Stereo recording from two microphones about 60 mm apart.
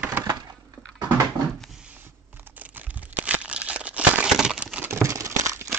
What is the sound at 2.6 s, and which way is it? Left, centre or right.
Crumpling, right.